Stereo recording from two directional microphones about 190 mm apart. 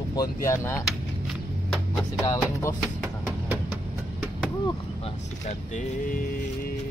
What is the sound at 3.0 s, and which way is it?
Music, 5° right (ahead or behind).